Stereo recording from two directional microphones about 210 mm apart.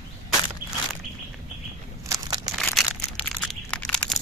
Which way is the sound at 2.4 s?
Centre (ahead or behind).